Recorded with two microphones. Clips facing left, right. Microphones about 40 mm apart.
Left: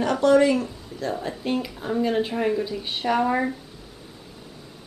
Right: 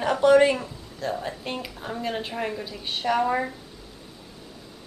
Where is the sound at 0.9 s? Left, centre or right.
Centre.